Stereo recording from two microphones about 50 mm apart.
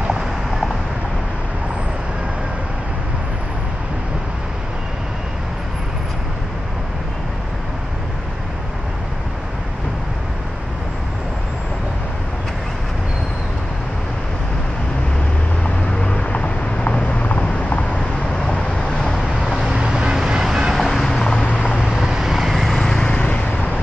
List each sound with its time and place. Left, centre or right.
15.6 s vehicle: left
19.4 s vehicle: centre
19.7 s vehicle: centre
21.7 s vehicle: centre
22.7 s vehicle: centre; by 23.5 s left